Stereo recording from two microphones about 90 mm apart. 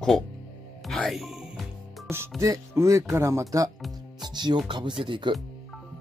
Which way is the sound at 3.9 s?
55° right (ahead or behind).